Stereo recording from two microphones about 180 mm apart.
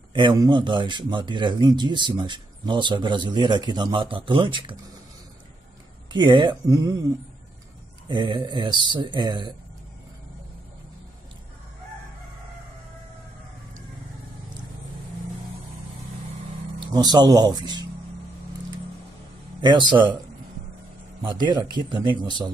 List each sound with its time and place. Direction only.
0.1 s speech: 25° right (ahead or behind)
6.1 s speech: 25° right (ahead or behind)
8.1 s speech: 25° right (ahead or behind)
16.8 s speech: 25° right (ahead or behind)
19.6 s speech: 25° right (ahead or behind)
21.2 s speech: 25° right (ahead or behind)